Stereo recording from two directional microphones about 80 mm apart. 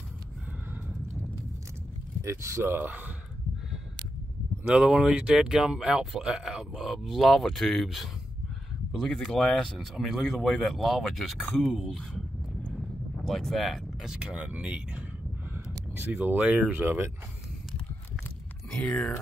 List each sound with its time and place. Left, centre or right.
2.2 s speech: right
4.6 s speech: centre; by 17.1 s right
18.7 s speech: centre